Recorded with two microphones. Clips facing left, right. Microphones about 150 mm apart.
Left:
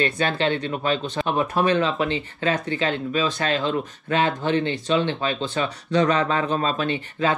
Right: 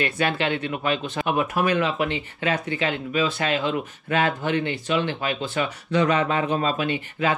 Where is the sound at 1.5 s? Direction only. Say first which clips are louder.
Left 2 dB; 25° left (ahead or behind).